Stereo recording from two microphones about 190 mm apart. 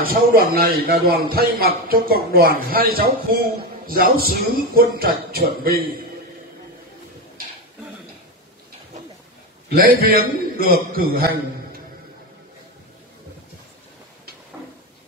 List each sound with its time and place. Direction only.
0.0 s a man's voice: 50° right (ahead or behind)
9.7 s a man's voice: 50° right (ahead or behind)